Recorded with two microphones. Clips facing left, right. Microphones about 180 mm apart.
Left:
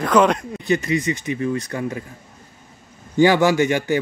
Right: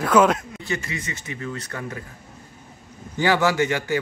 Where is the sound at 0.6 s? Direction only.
20° left (ahead or behind).